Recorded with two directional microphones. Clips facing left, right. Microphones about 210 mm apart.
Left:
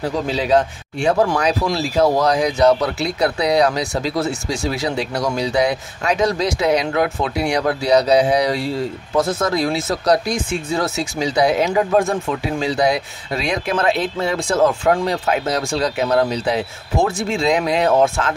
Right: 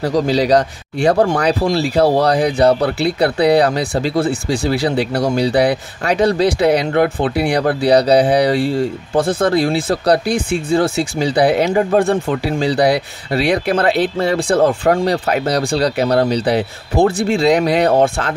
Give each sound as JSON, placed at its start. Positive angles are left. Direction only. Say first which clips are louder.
{"t": 0.0, "sound": "speech", "louder": "right 6 dB", "side_deg": -40}